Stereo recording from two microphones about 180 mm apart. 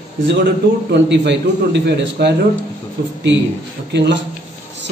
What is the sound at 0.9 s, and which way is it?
A man's voice, 70° right (ahead or behind).